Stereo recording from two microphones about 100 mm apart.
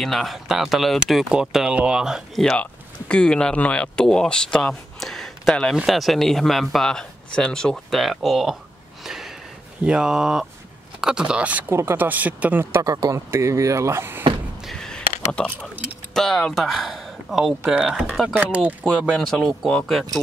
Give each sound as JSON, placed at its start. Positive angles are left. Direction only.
{"t": 0.0, "sound": "speech", "side_deg": 0}
{"t": 9.0, "sound": "a sound", "side_deg": -5}
{"t": 9.8, "sound": "speech", "side_deg": -5}
{"t": 11.7, "sound": "speech", "side_deg": -25}
{"t": 12.8, "sound": "speech", "side_deg": -35}
{"t": 14.7, "sound": "a sound", "side_deg": 5}
{"t": 16.1, "sound": "speech", "side_deg": 5}
{"t": 18.4, "sound": "speech", "side_deg": -15}
{"t": 19.1, "sound": "speech", "side_deg": 5}